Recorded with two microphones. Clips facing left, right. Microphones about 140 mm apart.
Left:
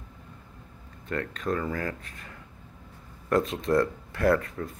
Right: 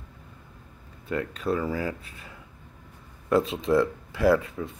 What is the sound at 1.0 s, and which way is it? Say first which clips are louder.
Speech: right 2 dB; 10° right (ahead or behind).